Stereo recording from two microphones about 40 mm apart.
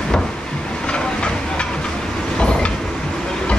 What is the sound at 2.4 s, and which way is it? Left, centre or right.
Train, left.